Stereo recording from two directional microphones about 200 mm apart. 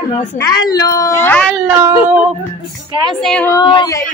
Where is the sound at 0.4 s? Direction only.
20° left (ahead or behind).